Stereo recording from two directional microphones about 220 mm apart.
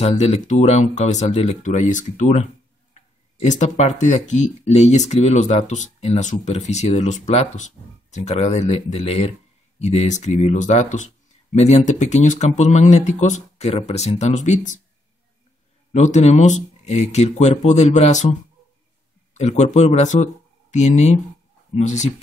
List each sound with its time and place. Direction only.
0.0 s speech: 30° left (ahead or behind)
15.9 s speech: 30° left (ahead or behind)
19.3 s speech: 30° left (ahead or behind)